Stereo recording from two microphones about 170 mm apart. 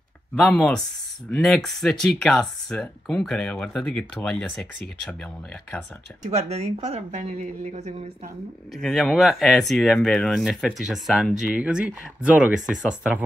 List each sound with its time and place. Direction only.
0.4 s speech: centre (ahead or behind)
6.2 s speech: 40° right (ahead or behind)
8.7 s speech: centre (ahead or behind)